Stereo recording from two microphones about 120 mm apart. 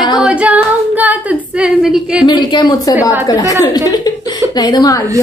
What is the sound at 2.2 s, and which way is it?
A woman's voice, 35° left (ahead or behind).